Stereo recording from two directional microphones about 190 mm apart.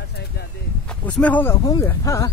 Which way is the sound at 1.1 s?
10° left (ahead or behind).